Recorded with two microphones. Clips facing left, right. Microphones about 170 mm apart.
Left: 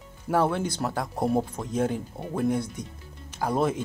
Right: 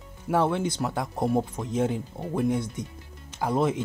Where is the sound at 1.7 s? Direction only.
20° right (ahead or behind).